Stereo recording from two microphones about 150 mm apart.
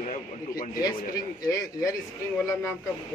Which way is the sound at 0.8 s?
25° left (ahead or behind).